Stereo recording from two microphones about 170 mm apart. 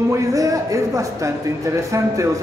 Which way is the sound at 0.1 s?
20° right (ahead or behind).